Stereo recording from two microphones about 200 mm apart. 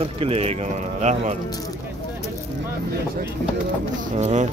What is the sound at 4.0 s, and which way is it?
Speech, 35° right (ahead or behind).